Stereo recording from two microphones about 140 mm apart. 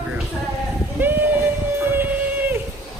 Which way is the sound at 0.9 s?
15° right (ahead or behind).